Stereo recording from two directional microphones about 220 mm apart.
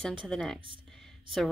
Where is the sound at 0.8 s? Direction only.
Centre (ahead or behind).